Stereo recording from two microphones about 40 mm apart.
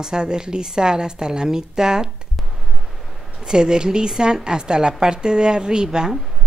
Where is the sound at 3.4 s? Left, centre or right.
Centre.